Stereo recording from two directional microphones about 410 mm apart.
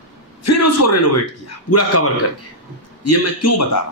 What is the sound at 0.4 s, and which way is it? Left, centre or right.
A man's voice, left.